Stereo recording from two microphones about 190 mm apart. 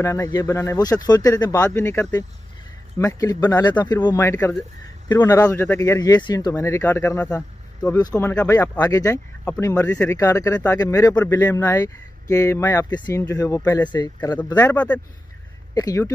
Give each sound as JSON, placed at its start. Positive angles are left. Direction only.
{"t": 0.0, "sound": "speech", "side_deg": 15}